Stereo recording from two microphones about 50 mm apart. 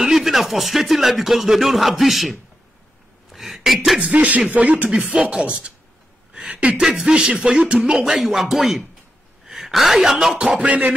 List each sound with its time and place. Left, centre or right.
0.0 s speech: centre
3.3 s a sound: centre
4.1 s music: right
4.5 s speech: right
5.1 s speech: centre
6.3 s a sound: right
6.8 s music: centre
8.0 s a woman's voice: centre
10.6 s music: right